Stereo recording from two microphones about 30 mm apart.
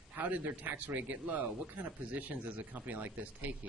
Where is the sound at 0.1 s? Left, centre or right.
Right.